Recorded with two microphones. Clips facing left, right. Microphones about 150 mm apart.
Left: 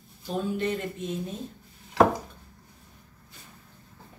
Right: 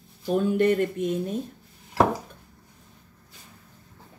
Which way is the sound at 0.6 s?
60° right (ahead or behind).